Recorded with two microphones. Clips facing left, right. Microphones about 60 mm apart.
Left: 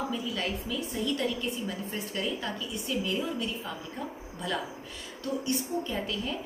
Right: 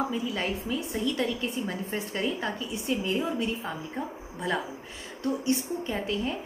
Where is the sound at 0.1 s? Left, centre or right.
Right.